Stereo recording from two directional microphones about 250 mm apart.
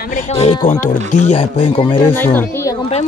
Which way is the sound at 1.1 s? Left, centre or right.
Left.